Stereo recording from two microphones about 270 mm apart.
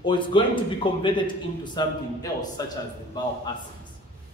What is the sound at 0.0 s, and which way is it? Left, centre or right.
A man's voice, centre.